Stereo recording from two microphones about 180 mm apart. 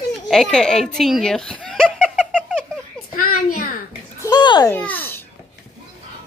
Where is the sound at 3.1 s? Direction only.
50° left (ahead or behind).